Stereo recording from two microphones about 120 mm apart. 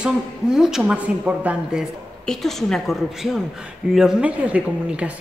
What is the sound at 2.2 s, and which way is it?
A woman's voice, 5° left (ahead or behind).